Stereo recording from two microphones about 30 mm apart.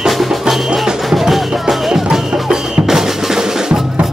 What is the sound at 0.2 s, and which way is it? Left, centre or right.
Music, centre.